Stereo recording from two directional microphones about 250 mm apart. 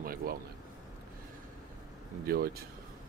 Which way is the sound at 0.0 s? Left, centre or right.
Right.